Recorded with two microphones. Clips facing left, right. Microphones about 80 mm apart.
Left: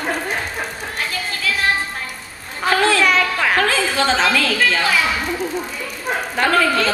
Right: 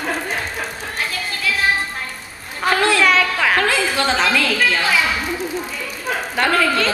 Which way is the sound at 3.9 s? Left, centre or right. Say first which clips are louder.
Left 1 dB; centre.